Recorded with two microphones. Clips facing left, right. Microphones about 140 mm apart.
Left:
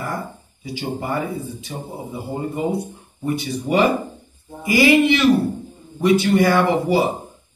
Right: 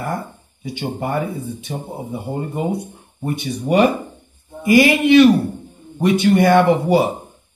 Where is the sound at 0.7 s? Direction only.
60° right (ahead or behind).